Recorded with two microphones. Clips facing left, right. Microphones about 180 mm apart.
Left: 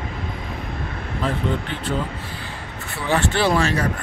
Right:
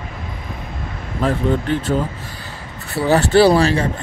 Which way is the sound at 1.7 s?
45° right (ahead or behind).